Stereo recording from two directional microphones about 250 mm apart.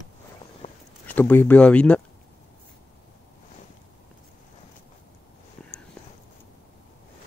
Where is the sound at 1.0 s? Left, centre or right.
Centre.